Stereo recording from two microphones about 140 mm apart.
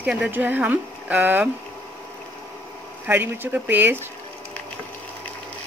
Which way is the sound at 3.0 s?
15° right (ahead or behind).